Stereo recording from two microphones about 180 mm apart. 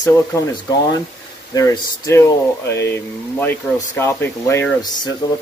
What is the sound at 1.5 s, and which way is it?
Speech, 20° left (ahead or behind).